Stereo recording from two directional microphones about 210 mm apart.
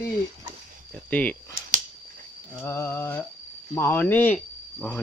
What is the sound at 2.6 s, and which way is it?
Speech, 10° left (ahead or behind).